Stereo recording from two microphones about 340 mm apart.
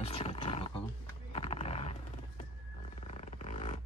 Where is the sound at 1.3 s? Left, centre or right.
Centre.